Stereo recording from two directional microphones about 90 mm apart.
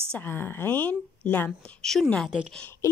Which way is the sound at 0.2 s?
25° left (ahead or behind).